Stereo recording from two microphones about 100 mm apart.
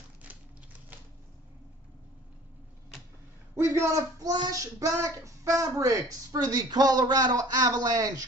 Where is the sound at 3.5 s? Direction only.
25° right (ahead or behind).